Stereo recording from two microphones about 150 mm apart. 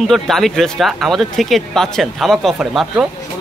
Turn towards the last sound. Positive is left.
turn(degrees=-5)  # may be behind; listen again after turning